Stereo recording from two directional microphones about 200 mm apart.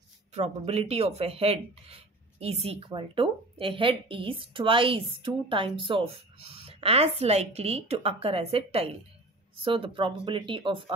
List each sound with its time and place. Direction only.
0.3 s speech: 35° right (ahead or behind)